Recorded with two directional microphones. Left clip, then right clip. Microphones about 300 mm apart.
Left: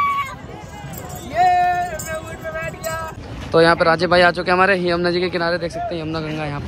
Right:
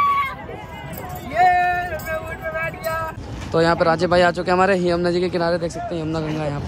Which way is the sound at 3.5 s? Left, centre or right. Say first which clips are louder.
Left 3 dB; centre.